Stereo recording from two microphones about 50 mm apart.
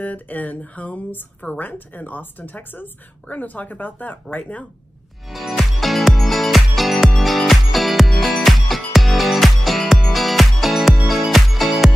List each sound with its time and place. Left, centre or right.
0.0 s speech: left
5.3 s music: centre